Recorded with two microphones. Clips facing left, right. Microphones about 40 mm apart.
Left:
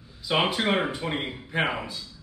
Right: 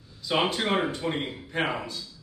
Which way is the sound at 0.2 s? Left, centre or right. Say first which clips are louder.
Left 1 dB; centre.